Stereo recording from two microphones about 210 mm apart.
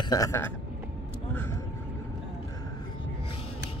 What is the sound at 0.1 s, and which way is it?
Speech, 15° left (ahead or behind).